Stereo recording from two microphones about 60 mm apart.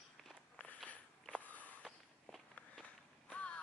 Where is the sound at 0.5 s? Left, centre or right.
Left.